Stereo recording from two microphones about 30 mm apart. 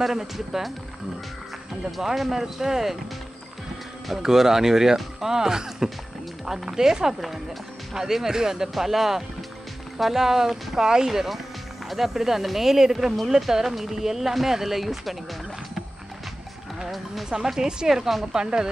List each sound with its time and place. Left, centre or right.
0.0 s speech: centre
1.9 s speech: centre
4.1 s speech: centre
11.1 s speech: centre
16.9 s speech: centre
17.3 s speech: centre
17.8 s speech: centre
18.3 s speech: right